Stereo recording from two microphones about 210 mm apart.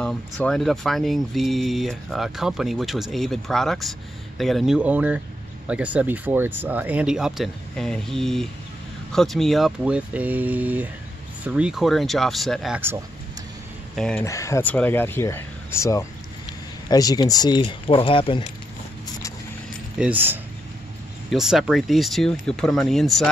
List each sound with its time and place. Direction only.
0.0 s speech: 5° left (ahead or behind)
13.9 s speech: 5° left (ahead or behind)
14.2 s speech: 15° left (ahead or behind)
20.0 s speech: 10° right (ahead or behind)